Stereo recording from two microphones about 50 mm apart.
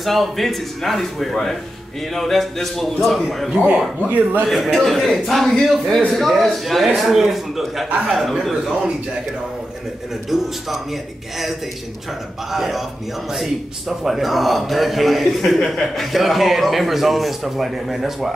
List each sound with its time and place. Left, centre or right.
0.0 s a man's voice: centre
4.1 s a man's voice: right
4.5 s a man's voice: centre
10.3 s a man's voice: centre
12.5 s a man's voice: centre